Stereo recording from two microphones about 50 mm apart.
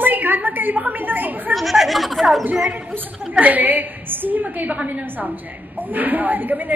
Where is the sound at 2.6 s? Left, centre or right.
Right.